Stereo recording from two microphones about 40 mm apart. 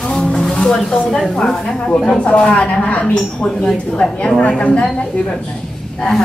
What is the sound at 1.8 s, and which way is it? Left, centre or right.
A woman's voice, left.